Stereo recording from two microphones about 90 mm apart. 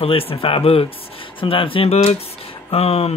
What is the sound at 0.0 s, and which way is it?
Speech, 90° left.